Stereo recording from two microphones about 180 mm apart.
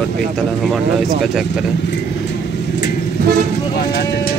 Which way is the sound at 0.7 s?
Centre (ahead or behind).